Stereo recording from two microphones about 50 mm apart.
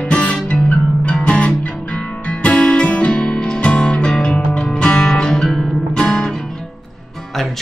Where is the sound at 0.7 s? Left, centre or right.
Centre.